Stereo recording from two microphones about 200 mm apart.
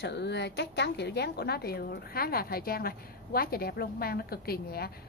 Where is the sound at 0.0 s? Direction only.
60° left (ahead or behind).